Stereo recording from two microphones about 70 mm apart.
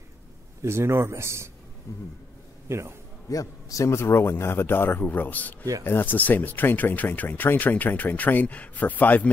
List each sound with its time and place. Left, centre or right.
0.6 s speech: right
1.9 s a sound: left
2.7 s speech: right
3.3 s a man's voice: left